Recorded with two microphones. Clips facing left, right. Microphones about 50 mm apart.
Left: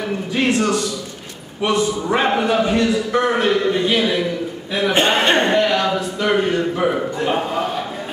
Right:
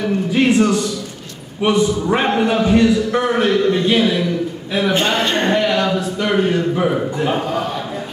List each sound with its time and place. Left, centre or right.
0.5 s a man's voice: centre
2.0 s a man's voice: centre
4.9 s speech: left
5.5 s a man's voice: centre